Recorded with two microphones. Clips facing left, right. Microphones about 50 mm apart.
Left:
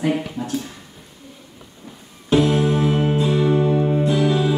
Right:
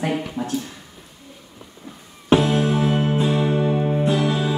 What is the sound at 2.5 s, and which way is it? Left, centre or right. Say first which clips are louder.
Music: left 1 dB; centre.